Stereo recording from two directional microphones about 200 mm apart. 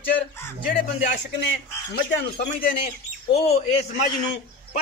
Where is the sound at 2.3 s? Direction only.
50° left (ahead or behind).